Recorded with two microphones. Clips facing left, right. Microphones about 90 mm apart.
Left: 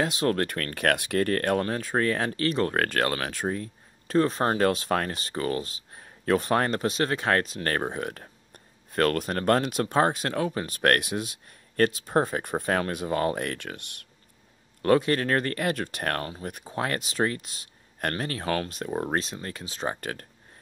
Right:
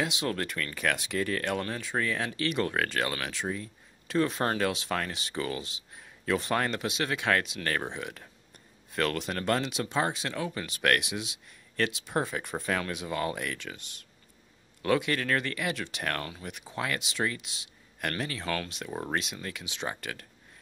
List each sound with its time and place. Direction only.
0.0 s speech: 45° left (ahead or behind); by 14.0 s 60° left (ahead or behind)
14.8 s speech: 40° left (ahead or behind)
18.9 s speech: 25° left (ahead or behind); by 20.2 s 45° left (ahead or behind)